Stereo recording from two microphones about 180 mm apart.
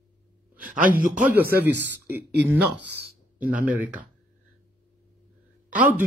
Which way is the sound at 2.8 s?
65° right (ahead or behind).